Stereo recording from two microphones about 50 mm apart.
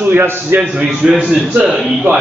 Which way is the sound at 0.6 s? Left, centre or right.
Right.